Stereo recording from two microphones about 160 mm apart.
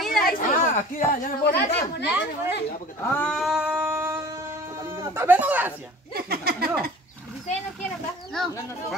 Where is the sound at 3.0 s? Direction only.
10° left (ahead or behind); by 4.2 s 15° right (ahead or behind).